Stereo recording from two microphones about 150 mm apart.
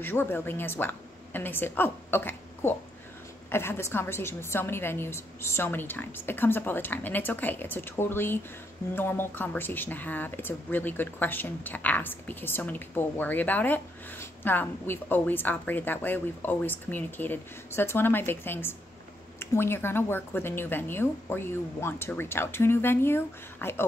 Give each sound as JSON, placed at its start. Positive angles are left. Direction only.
{"t": 0.0, "sound": "a woman's voice", "side_deg": 15}